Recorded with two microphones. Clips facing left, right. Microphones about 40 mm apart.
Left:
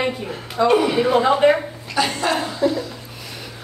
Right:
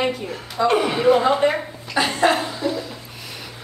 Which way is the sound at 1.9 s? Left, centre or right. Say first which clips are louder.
Right 2 dB; right.